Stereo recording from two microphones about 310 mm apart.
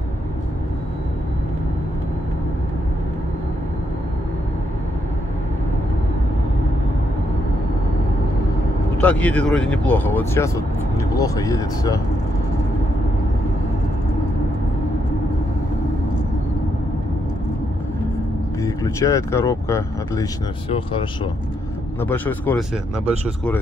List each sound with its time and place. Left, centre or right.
8.9 s speech: centre
18.6 s speech: centre
22.0 s speech: centre